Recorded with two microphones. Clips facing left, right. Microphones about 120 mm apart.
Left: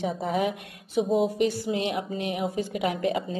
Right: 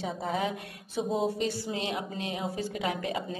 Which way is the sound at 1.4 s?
20° left (ahead or behind).